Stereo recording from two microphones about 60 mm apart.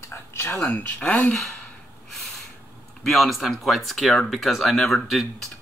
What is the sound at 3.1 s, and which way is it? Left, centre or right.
Speech, centre.